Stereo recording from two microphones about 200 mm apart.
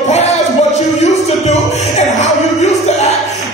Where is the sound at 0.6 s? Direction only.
35° left (ahead or behind).